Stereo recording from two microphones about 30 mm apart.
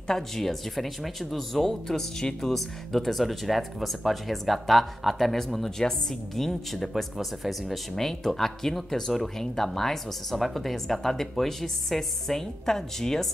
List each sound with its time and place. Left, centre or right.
0.1 s speech: centre
5.8 s a woman's voice: left
6.3 s speech: centre
7.9 s speech: centre